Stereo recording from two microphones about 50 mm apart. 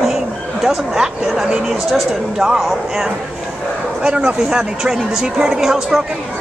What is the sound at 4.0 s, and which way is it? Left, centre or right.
A man's voice, centre.